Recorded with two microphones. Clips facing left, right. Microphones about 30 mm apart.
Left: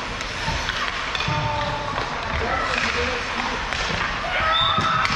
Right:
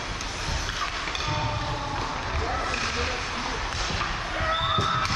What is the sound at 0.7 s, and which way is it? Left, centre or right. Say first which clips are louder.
Music: left 5 dB; left.